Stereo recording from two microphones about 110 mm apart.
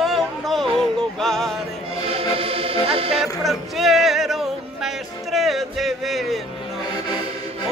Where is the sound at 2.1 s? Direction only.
60° right (ahead or behind).